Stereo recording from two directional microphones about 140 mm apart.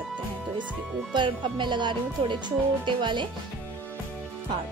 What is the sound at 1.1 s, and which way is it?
Speech, 35° right (ahead or behind).